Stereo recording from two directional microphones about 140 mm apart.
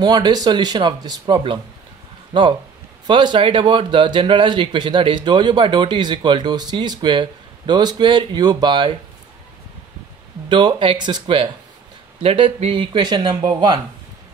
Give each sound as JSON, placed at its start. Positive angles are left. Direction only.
{"t": 0.0, "sound": "speech", "side_deg": -30}
{"t": 10.5, "sound": "speech", "side_deg": -35}